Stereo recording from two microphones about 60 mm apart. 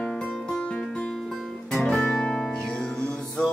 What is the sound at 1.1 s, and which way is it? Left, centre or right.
Music, centre.